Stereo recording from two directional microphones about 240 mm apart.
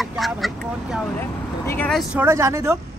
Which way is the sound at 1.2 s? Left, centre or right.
Centre.